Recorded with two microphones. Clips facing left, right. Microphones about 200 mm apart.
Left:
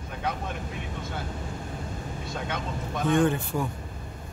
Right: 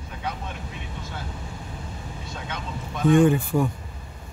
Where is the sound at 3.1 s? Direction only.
10° right (ahead or behind).